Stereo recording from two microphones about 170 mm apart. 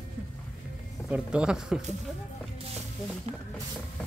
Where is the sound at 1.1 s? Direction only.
5° right (ahead or behind).